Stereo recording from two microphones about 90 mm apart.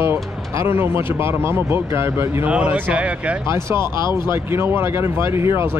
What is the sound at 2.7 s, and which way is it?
Speech, 20° right (ahead or behind).